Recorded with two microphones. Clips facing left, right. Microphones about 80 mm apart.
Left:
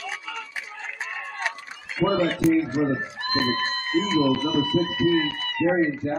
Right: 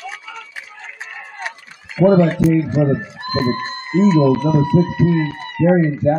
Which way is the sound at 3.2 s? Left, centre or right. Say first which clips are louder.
Right 5 dB; right.